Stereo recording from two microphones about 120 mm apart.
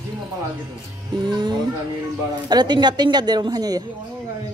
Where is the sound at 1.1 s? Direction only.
40° right (ahead or behind).